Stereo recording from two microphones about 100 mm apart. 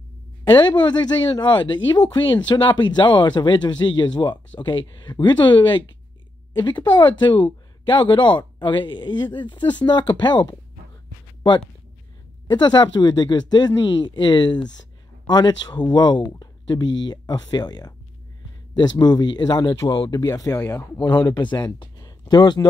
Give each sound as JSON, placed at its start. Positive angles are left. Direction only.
{"t": 0.5, "sound": "speech", "side_deg": 50}
{"t": 12.4, "sound": "speech", "side_deg": 50}
{"t": 21.0, "sound": "speech", "side_deg": 45}